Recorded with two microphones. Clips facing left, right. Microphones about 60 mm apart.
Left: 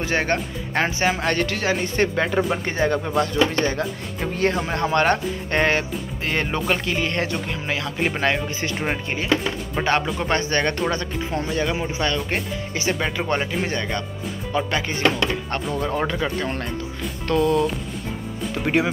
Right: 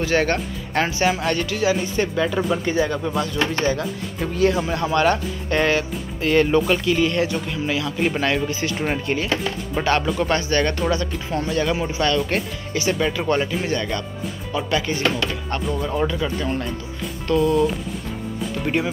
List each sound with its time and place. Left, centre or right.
0.0 s speech: left
6.7 s speech: left
8.0 s speech: left
8.8 s speech: left
10.2 s speech: left
11.3 s speech: centre; by 16.6 s left
17.3 s music: left
18.7 s speech: left